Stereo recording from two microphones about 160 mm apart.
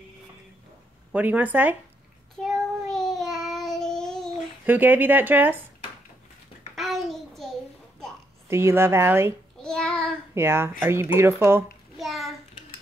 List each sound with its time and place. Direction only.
1.1 s speech: 10° right (ahead or behind)
2.4 s child singing: centre (ahead or behind)
4.6 s speech: 10° right (ahead or behind)
6.7 s a sound: centre (ahead or behind)
8.5 s speech: 15° right (ahead or behind)
9.6 s child singing: 5° left (ahead or behind)
10.3 s speech: 15° right (ahead or behind)
12.0 s a sound: centre (ahead or behind)